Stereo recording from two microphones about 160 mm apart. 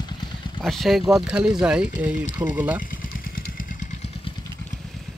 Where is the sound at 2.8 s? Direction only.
60° left (ahead or behind).